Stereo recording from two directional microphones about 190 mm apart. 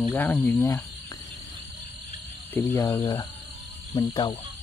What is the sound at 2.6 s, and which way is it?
Speech, 15° left (ahead or behind).